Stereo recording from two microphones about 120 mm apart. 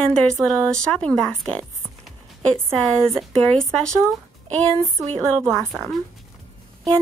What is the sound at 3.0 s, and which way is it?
A woman's voice, 5° left (ahead or behind).